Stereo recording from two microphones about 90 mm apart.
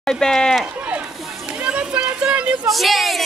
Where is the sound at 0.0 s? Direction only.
5° left (ahead or behind).